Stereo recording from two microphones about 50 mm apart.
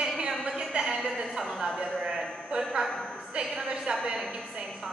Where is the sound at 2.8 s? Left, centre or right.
Centre.